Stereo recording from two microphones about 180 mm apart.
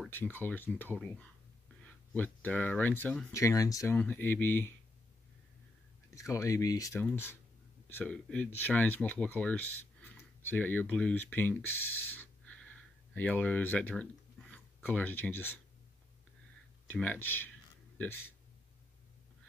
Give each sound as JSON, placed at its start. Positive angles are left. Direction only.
{"t": 0.0, "sound": "speech", "side_deg": 10}
{"t": 3.3, "sound": "speech", "side_deg": 20}
{"t": 6.0, "sound": "speech", "side_deg": 15}
{"t": 16.9, "sound": "speech", "side_deg": 10}